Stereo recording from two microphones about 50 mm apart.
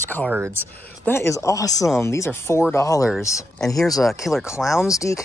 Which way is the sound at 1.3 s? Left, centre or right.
Left.